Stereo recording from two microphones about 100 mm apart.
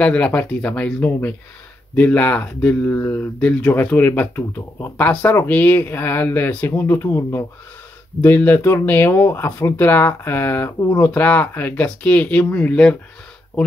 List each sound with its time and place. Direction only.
0.0 s speech: 10° left (ahead or behind)
2.9 s speech: 25° left (ahead or behind)
3.2 s speech: 15° left (ahead or behind); by 7.4 s 30° left (ahead or behind)
8.2 s speech: 15° left (ahead or behind)